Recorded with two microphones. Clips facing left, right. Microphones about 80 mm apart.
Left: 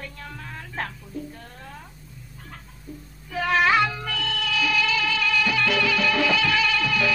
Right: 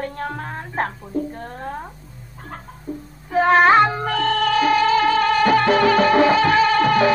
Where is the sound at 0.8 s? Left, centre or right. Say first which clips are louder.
Right 9 dB; right.